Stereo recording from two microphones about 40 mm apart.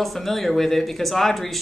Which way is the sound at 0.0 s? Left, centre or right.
Centre.